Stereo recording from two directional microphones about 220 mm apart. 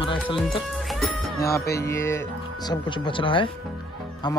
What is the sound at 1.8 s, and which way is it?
Speech, 10° left (ahead or behind).